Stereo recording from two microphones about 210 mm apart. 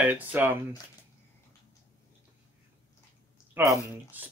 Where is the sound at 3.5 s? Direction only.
15° right (ahead or behind).